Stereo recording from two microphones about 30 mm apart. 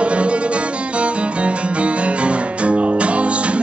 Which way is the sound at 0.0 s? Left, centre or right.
Right.